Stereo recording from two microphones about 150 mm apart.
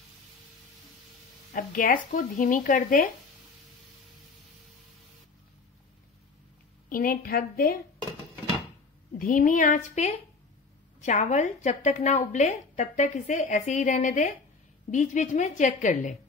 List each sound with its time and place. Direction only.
1.5 s a woman's voice: 65° left (ahead or behind)
6.9 s a woman's voice: 70° left (ahead or behind)
9.2 s a woman's voice: 60° left (ahead or behind)